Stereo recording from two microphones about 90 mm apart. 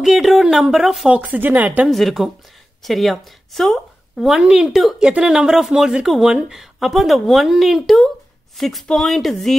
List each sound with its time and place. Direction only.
0.0 s speech: 5° right (ahead or behind)
1.1 s speech: 15° right (ahead or behind)
1.9 s speech: centre (ahead or behind)